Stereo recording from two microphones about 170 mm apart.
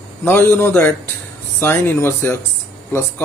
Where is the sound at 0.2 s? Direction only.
10° left (ahead or behind).